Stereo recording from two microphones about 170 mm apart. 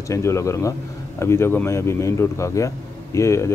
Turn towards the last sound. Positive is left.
turn(degrees=15)  # may be behind; listen again after turning